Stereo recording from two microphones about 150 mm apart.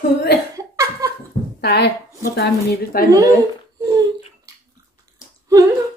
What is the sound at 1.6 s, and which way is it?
A woman's voice, 90° left.